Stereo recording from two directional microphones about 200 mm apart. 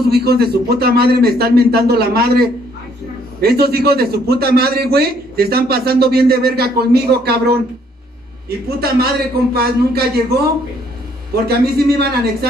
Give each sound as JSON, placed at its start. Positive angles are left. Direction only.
{"t": 0.1, "sound": "a man's voice", "side_deg": -50}